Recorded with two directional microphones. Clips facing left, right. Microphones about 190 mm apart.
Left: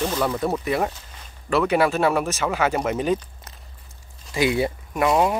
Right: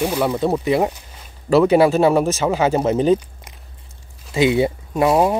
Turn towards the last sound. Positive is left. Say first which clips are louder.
# right 4 dB
turn(degrees=-30)  # may be behind; listen again after turning